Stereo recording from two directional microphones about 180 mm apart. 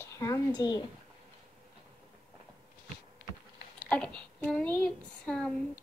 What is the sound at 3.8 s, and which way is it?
Speech, 5° left (ahead or behind).